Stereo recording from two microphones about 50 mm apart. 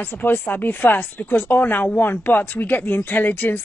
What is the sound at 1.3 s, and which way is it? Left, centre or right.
Speech, left.